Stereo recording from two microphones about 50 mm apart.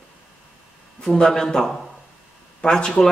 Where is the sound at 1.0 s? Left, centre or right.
Centre.